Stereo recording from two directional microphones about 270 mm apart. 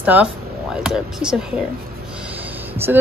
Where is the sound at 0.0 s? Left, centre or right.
Centre.